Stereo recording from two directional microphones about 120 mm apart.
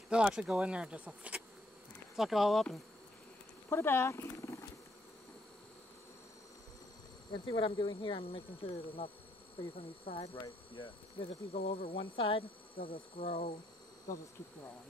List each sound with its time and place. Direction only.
0.1 s speech: 5° right (ahead or behind)
3.6 s purr: 20° left (ahead or behind)
7.4 s speech: 45° left (ahead or behind)